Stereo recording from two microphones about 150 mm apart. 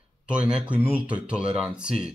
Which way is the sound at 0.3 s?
5° right (ahead or behind).